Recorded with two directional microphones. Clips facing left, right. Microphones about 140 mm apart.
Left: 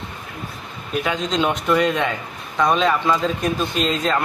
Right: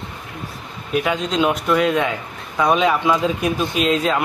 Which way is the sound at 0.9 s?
5° right (ahead or behind).